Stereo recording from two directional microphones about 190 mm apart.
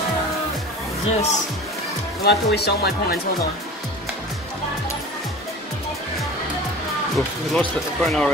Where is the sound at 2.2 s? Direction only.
60° left (ahead or behind).